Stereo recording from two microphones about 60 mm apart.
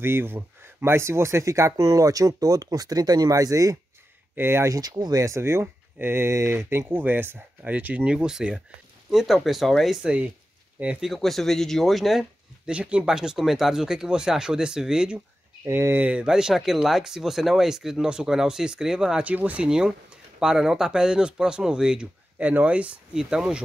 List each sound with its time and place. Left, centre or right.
0.0 s speech: right
1.8 s speech: right
4.4 s speech: right
4.6 s speech: right
5.3 s speech: right; by 9.9 s centre
10.0 s speech: right
11.0 s speech: centre
12.6 s speech: centre
15.6 s speech: right
16.1 s speech: centre
19.2 s speech: right
20.3 s speech: centre
22.4 s speech: right
23.1 s speech: centre